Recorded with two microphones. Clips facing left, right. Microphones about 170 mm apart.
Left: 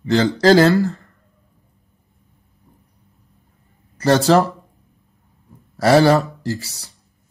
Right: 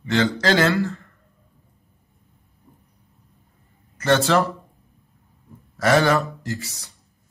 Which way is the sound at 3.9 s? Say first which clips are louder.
Left 4 dB; 35° left (ahead or behind).